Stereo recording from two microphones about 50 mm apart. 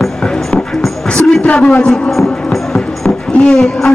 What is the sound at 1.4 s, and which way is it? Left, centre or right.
Music, left.